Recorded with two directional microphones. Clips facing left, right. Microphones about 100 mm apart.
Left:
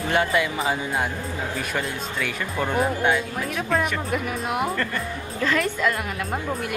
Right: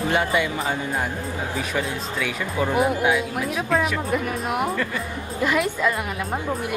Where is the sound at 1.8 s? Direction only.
5° right (ahead or behind).